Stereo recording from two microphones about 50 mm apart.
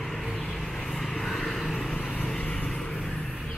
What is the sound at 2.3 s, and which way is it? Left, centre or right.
Vehicle, left.